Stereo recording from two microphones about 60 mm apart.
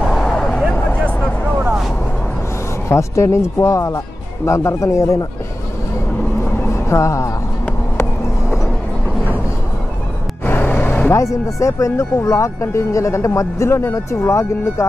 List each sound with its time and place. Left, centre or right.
0.1 s vehicle: centre
2.9 s speech: left
6.9 s speech: left
10.4 s music: left
10.8 s vehicle: left
11.1 s speech: left